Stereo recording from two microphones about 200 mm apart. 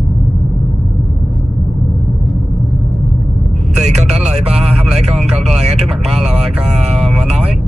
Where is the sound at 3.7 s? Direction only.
35° right (ahead or behind).